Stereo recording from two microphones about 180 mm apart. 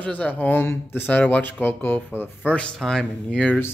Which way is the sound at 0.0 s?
10° left (ahead or behind).